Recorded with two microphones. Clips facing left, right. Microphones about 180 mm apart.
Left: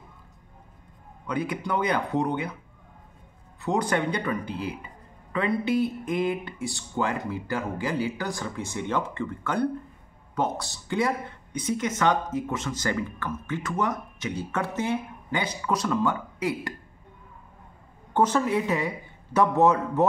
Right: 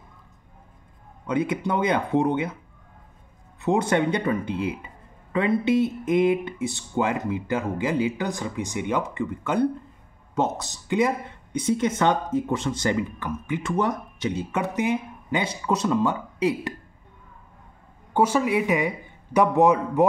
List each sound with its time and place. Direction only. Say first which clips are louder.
1.2 s speech: right 5 dB; 25° right (ahead or behind)
3.6 s speech: right 4 dB; 25° right (ahead or behind)
12.9 s a man's voice: right 3 dB; 15° right (ahead or behind)
13.6 s speech: right 3 dB; 30° right (ahead or behind)
15.4 s speech: right 3 dB; 25° right (ahead or behind)
18.1 s a man's voice: right 2 dB; 10° right (ahead or behind)